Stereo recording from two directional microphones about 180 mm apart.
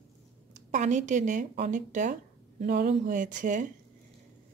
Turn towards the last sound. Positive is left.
turn(degrees=-45)  # may be behind; listen again after turning